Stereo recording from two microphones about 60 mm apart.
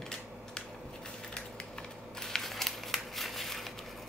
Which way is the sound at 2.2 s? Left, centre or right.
Centre.